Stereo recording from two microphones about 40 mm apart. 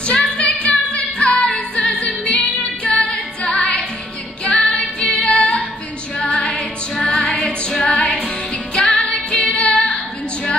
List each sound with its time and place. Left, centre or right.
0.0 s music: left
5.2 s female singing: left
6.2 s music: left